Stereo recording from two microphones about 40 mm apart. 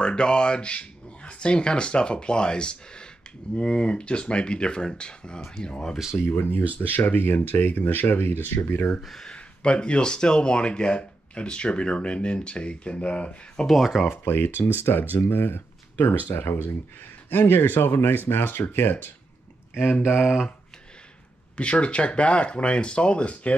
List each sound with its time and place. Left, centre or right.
0.0 s speech: left
6.3 s speech: left
6.8 s speech: left
7.3 s speech: left
9.3 s speech: left
13.7 s speech: centre
14.1 s speech: left
16.3 s speech: left
17.5 s speech: left
20.2 s speech: centre
21.5 s speech: left